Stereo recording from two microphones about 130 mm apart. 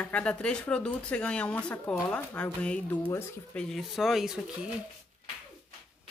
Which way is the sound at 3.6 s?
Centre (ahead or behind).